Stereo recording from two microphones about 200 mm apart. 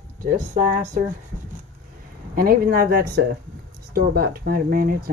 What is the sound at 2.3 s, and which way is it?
Speech, 45° right (ahead or behind).